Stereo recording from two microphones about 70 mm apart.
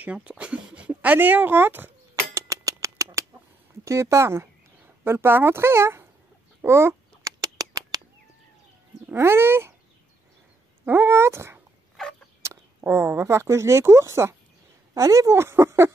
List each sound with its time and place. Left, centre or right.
0.0 s speech: centre
2.3 s a sound: right
3.8 s speech: right
6.6 s chicken: right
7.3 s duck: right
9.1 s speech: right
10.9 s speech: right
12.0 s a sound: centre
12.4 s a sound: right
12.9 s speech: right